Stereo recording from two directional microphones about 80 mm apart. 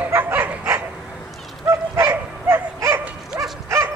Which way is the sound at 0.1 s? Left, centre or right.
Right.